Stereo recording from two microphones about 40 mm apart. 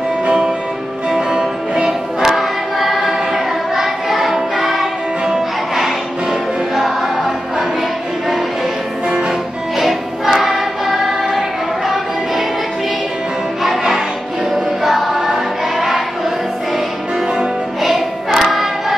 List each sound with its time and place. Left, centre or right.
1.1 s music: centre
6.7 s music: centre
9.8 s music: centre
13.6 s music: centre
14.5 s choir: centre
17.8 s choir: centre